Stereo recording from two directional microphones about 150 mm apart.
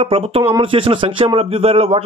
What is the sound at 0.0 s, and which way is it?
Speech, 40° right (ahead or behind).